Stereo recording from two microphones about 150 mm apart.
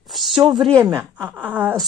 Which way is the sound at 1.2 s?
10° right (ahead or behind).